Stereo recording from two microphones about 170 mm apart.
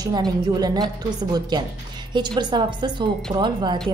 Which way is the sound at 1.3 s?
25° right (ahead or behind).